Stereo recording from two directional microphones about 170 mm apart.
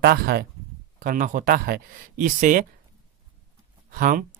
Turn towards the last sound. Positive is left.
turn(degrees=-55)  # may be behind; listen again after turning